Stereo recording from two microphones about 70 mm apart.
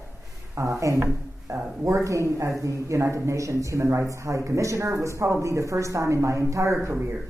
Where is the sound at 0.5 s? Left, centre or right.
Right.